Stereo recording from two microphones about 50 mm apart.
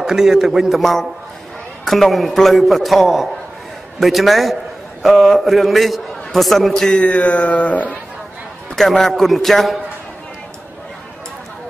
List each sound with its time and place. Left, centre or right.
0.0 s a man's voice: centre
6.9 s speech: left
8.7 s a man's voice: centre